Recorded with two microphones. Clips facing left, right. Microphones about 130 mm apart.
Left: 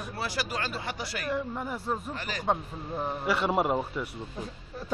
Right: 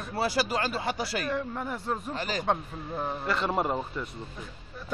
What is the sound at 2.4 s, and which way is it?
A man's voice, 5° left (ahead or behind).